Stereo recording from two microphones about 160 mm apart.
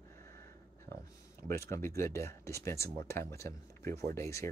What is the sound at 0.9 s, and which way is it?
Speech, 15° left (ahead or behind).